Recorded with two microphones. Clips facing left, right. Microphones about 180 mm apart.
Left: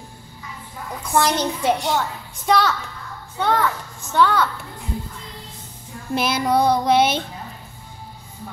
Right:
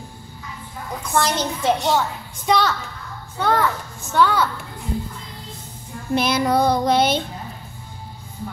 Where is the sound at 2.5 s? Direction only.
Centre (ahead or behind).